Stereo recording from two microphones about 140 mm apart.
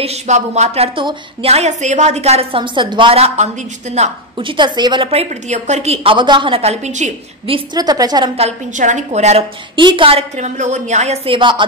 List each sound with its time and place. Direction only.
0.0 s a woman's voice: 50° right (ahead or behind)
4.4 s a woman's voice: 35° right (ahead or behind); by 7.1 s 55° right (ahead or behind)
7.4 s a woman's voice: 35° right (ahead or behind)
8.4 s a woman's voice: 55° right (ahead or behind)
9.8 s a woman's voice: 35° right (ahead or behind)
10.3 s speech: 55° right (ahead or behind)
11.3 s a woman's voice: 35° right (ahead or behind)